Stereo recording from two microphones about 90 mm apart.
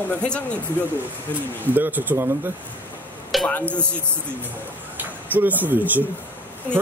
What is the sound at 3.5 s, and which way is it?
Speech, 20° left (ahead or behind).